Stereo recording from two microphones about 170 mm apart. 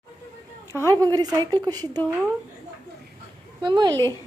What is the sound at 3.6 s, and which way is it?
Speech, 25° right (ahead or behind).